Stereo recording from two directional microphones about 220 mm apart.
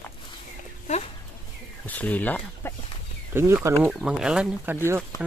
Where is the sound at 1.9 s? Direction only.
5° left (ahead or behind).